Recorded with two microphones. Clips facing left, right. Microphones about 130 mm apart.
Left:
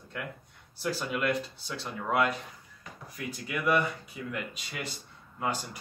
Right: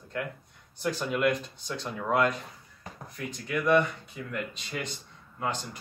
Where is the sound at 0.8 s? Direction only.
Centre (ahead or behind).